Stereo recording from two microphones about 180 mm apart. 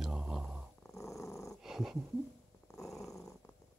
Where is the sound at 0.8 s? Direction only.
15° left (ahead or behind).